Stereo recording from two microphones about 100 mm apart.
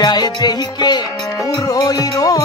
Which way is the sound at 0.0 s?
45° left (ahead or behind).